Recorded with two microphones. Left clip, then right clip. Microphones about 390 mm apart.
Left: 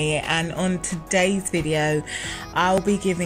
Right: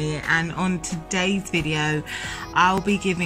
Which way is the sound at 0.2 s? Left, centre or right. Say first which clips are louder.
Right 1 dB; centre.